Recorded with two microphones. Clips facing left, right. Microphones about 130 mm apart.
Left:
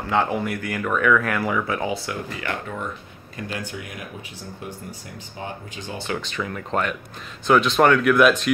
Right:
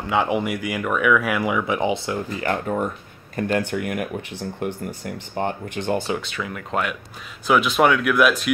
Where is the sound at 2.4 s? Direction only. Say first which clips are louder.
Right 8 dB; 40° right (ahead or behind).